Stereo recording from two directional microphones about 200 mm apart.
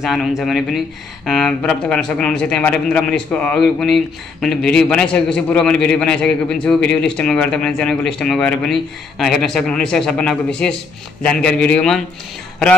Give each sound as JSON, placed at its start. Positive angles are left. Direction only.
{"t": 0.0, "sound": "speech", "side_deg": 0}